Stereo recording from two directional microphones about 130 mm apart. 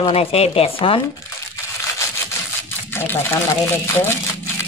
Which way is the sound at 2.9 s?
20° left (ahead or behind).